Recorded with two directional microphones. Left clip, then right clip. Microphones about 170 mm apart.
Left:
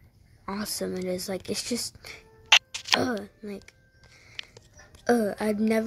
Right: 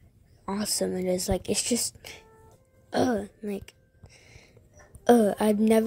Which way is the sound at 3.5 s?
25° right (ahead or behind).